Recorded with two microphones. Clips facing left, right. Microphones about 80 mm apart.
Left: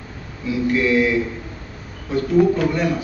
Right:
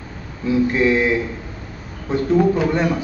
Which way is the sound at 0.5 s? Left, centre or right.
Right.